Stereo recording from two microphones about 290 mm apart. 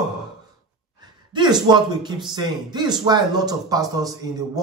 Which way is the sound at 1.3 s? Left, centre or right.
Centre.